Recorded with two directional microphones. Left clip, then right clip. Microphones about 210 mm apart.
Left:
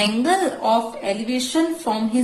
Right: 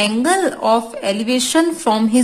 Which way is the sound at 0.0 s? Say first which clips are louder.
Right 3 dB; 30° right (ahead or behind).